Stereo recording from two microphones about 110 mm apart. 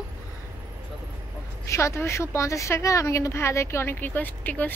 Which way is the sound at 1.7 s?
25° left (ahead or behind).